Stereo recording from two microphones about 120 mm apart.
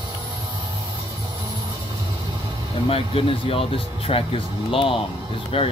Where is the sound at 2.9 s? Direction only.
50° left (ahead or behind).